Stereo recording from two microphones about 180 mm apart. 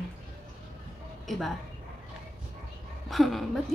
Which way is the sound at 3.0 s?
Centre (ahead or behind).